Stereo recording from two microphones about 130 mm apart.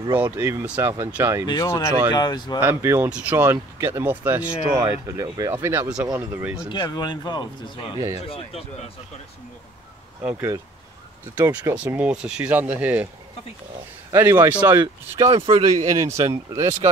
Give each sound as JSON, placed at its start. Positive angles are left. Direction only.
{"t": 0.2, "sound": "speech", "side_deg": -20}
{"t": 1.7, "sound": "speech", "side_deg": 20}
{"t": 2.1, "sound": "speech", "side_deg": 35}
{"t": 2.6, "sound": "speech", "side_deg": -20}
{"t": 6.7, "sound": "speech", "side_deg": 35}
{"t": 8.3, "sound": "speech", "side_deg": 50}
{"t": 10.3, "sound": "speech", "side_deg": -25}
{"t": 14.1, "sound": "speech", "side_deg": -20}
{"t": 15.1, "sound": "speech", "side_deg": -45}
{"t": 15.8, "sound": "speech", "side_deg": -30}